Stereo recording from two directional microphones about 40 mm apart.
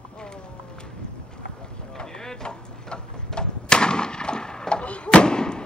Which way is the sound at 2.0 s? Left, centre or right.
Centre.